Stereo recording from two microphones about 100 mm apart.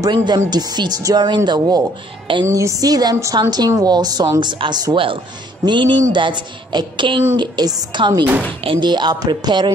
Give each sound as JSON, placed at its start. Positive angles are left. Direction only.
{"t": 0.0, "sound": "speech", "side_deg": -45}
{"t": 2.4, "sound": "a woman's voice", "side_deg": -30}